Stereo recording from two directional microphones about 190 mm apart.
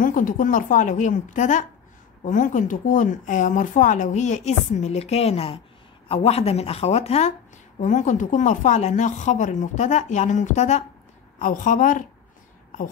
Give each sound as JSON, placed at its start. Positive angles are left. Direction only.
{"t": 0.0, "sound": "a woman's voice", "side_deg": 45}